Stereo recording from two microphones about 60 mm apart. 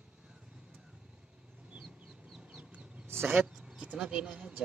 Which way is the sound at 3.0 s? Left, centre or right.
Right.